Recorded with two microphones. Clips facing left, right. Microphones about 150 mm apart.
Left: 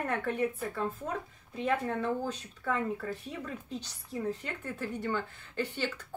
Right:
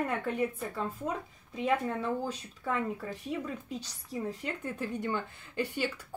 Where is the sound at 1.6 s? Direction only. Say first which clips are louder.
Right 1 dB; 10° right (ahead or behind).